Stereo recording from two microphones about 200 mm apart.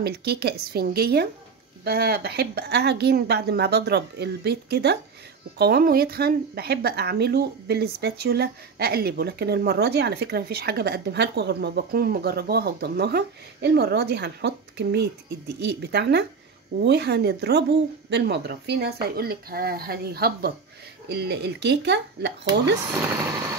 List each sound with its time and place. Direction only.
0.0 s a woman's voice: 55° right (ahead or behind)